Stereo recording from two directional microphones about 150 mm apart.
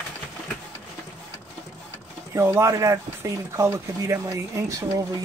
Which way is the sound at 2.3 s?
20° right (ahead or behind).